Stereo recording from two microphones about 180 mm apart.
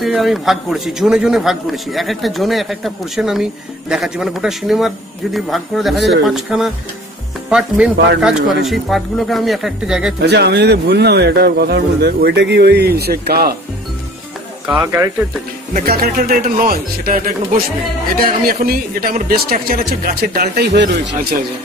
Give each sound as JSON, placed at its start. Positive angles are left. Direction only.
{"t": 0.0, "sound": "a man's voice", "side_deg": 0}
{"t": 10.2, "sound": "a man's voice", "side_deg": -65}
{"t": 14.8, "sound": "speech", "side_deg": -15}
{"t": 15.7, "sound": "a man's voice", "side_deg": -55}